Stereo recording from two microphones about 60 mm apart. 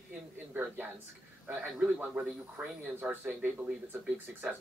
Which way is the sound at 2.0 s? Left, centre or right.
Right.